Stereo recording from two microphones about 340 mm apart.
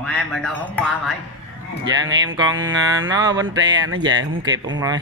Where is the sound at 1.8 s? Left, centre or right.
Right.